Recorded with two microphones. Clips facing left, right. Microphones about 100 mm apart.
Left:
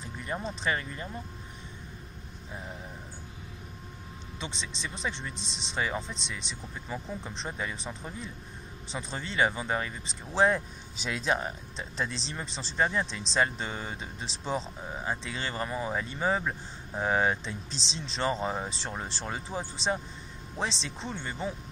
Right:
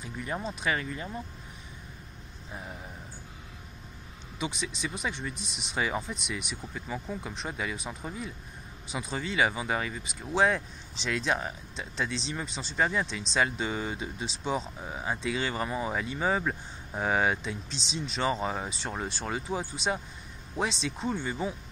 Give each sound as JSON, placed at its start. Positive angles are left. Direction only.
{"t": 0.3, "sound": "speech", "side_deg": 0}
{"t": 4.4, "sound": "speech", "side_deg": -10}
{"t": 5.3, "sound": "speech", "side_deg": 25}
{"t": 5.8, "sound": "speech", "side_deg": -10}
{"t": 6.7, "sound": "speech", "side_deg": 0}
{"t": 15.9, "sound": "speech", "side_deg": 0}
{"t": 17.6, "sound": "speech", "side_deg": 35}
{"t": 18.1, "sound": "speech", "side_deg": -5}